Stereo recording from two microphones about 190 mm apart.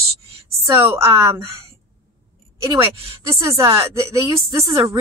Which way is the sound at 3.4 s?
15° right (ahead or behind).